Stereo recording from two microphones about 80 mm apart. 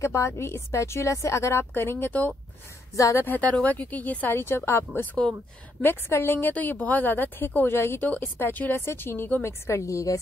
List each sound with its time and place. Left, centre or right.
0.0 s speech: left
2.9 s a woman's voice: left
3.3 s a woman's voice: centre
5.2 s speech: centre
5.8 s a woman's voice: left